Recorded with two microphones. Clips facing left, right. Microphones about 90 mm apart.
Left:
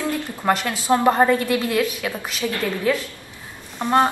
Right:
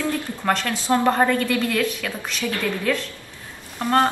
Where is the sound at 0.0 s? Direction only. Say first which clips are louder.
Left 1 dB; 15° left (ahead or behind).